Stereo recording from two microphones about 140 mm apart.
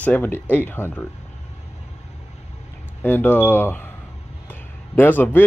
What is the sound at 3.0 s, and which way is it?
Speech, 10° left (ahead or behind).